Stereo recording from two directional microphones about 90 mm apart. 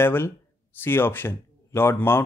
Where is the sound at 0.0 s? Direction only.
25° left (ahead or behind).